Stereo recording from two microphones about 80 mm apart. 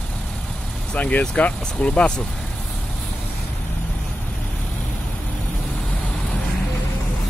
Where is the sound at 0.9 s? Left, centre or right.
Centre.